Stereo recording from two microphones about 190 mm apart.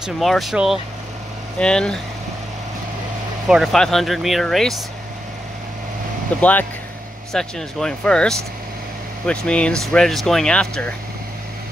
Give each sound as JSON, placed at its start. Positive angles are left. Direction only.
{"t": 0.0, "sound": "speech", "side_deg": 0}
{"t": 3.4, "sound": "speech", "side_deg": 0}
{"t": 7.3, "sound": "speech", "side_deg": 5}